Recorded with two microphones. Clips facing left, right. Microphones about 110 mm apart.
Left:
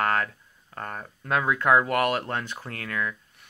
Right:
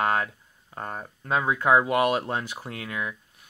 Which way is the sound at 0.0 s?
15° right (ahead or behind).